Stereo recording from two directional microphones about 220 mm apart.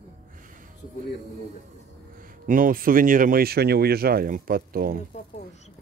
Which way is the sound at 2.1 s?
40° right (ahead or behind).